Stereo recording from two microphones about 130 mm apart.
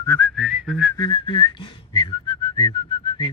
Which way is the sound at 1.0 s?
40° left (ahead or behind).